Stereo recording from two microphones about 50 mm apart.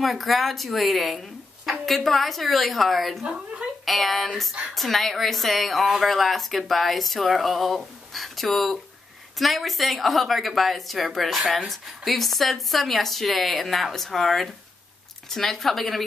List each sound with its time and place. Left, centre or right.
0.0 s a woman's voice: centre
3.3 s speech: centre
3.8 s a woman's voice: centre